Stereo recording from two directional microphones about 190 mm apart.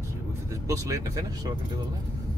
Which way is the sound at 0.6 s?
15° right (ahead or behind).